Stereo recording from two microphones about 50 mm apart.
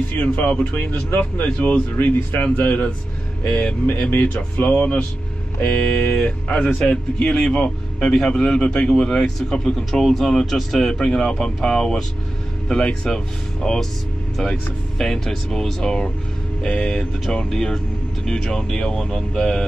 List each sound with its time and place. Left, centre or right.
0.2 s speech: left; by 19.6 s centre